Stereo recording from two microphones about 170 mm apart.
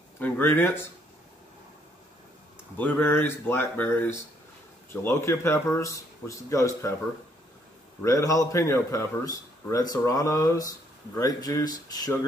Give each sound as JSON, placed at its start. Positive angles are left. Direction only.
{"t": 0.2, "sound": "speech", "side_deg": 10}
{"t": 2.8, "sound": "speech", "side_deg": 10}
{"t": 8.0, "sound": "a man's voice", "side_deg": 20}